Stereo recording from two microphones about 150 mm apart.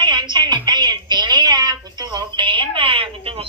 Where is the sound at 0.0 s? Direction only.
30° right (ahead or behind).